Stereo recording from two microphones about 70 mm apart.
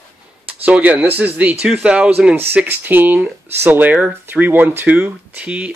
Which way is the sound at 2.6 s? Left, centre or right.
Right.